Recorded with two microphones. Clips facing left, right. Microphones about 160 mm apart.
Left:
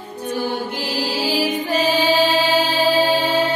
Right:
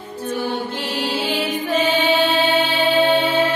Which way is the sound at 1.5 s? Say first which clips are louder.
Even; 35° left (ahead or behind).